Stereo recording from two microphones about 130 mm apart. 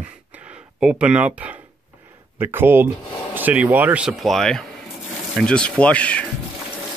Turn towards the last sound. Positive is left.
turn(degrees=10)  # may be behind; listen again after turning